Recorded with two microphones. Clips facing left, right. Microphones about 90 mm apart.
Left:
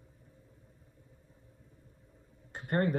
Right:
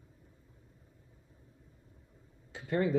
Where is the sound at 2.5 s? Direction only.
55° left (ahead or behind).